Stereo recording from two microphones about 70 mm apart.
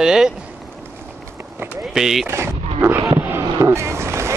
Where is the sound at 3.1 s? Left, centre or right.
Right.